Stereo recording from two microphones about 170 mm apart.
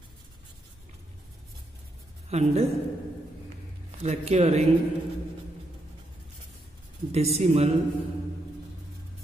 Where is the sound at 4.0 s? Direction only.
40° right (ahead or behind).